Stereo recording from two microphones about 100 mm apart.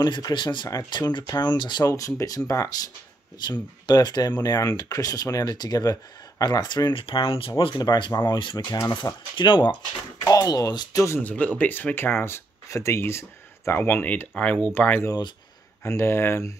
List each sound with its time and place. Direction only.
0.0 s speech: 50° left (ahead or behind)
1.9 s speech: 35° left (ahead or behind)
3.4 s speech: 45° left (ahead or behind)
7.8 s speech: 40° left (ahead or behind)
8.3 s speech: 55° left (ahead or behind)
10.2 s speech: 35° left (ahead or behind)
11.2 s speech: 15° left (ahead or behind)